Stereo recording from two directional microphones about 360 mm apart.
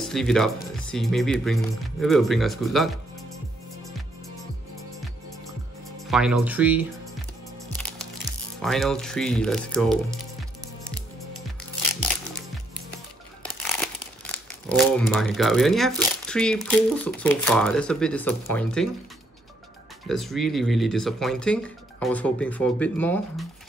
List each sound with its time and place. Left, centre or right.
0.0 s speech: centre
3.8 s music: centre
5.9 s speech: centre
7.7 s music: centre
8.5 s speech: centre
13.6 s crumpling: centre
15.3 s speech: centre
20.1 s speech: centre